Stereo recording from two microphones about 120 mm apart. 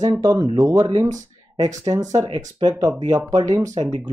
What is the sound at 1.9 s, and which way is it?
Speech, 30° right (ahead or behind).